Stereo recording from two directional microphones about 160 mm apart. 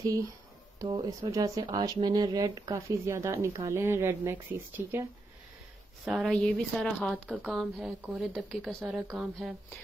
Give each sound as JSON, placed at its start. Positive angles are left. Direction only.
{"t": 0.7, "sound": "speech", "side_deg": -25}
{"t": 6.0, "sound": "a woman's voice", "side_deg": 0}